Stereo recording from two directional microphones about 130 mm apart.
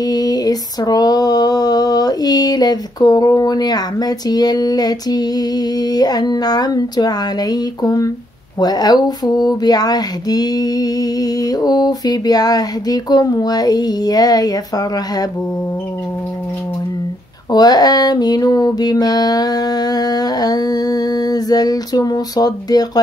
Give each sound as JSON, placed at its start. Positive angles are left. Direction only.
{"t": 0.0, "sound": "female singing", "side_deg": 30}
{"t": 8.5, "sound": "speech", "side_deg": 30}
{"t": 17.5, "sound": "a sound", "side_deg": 30}